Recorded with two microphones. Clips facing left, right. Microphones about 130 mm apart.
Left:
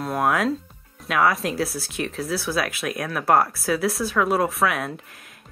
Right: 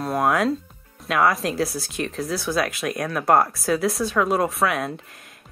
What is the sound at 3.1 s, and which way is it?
Speech, 25° right (ahead or behind).